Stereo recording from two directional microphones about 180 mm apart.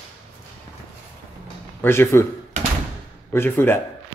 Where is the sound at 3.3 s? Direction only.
15° left (ahead or behind).